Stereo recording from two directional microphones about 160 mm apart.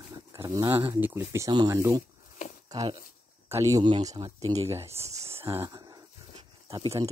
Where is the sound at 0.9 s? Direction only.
15° right (ahead or behind).